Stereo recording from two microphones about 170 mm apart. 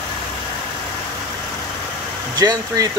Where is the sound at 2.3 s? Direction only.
20° right (ahead or behind).